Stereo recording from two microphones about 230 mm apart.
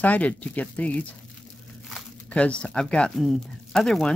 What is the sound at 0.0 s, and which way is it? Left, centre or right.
Speech, centre.